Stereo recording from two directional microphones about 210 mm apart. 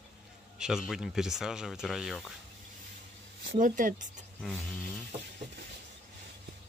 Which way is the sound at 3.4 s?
45° right (ahead or behind).